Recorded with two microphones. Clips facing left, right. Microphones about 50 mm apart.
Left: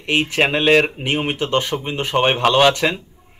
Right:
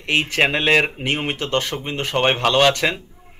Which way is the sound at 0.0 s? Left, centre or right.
Centre.